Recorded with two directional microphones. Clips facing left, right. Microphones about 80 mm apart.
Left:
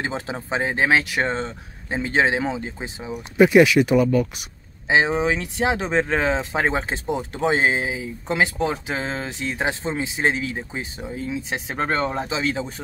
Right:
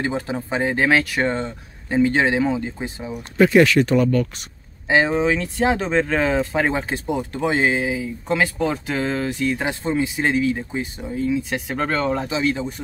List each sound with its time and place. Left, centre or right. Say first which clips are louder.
0.0 s speech: right 3 dB; left